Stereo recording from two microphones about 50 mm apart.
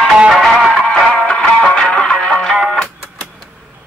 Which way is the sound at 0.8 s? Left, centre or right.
Left.